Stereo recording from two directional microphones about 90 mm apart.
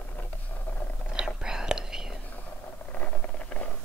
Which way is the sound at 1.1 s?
5° right (ahead or behind).